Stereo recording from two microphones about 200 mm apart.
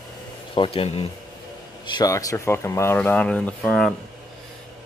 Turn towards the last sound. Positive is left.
turn(degrees=5)  # may be behind; listen again after turning